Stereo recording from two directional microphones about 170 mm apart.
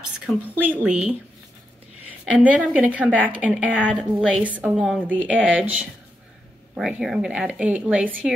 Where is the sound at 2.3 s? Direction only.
10° right (ahead or behind).